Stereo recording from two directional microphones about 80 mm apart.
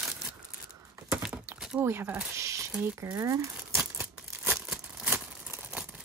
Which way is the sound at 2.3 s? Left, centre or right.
Right.